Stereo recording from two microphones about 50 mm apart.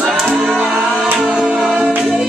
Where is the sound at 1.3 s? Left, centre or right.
Centre.